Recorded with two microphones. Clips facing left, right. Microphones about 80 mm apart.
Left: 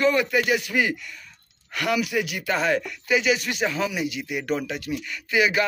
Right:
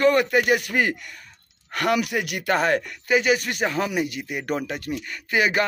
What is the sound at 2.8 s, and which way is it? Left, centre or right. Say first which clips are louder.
A man's voice: right 2 dB; right.